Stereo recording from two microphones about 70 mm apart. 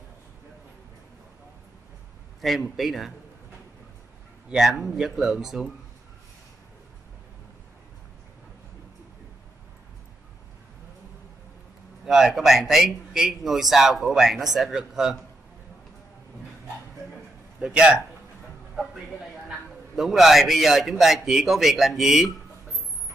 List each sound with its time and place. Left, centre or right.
2.7 s speech: centre
4.5 s speech: centre
12.1 s speech: centre
17.6 s speech: centre
20.0 s speech: centre